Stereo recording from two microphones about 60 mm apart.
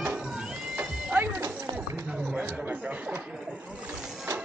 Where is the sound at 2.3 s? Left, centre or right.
Right.